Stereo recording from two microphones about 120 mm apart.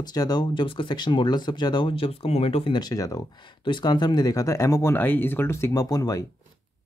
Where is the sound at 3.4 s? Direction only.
40° left (ahead or behind).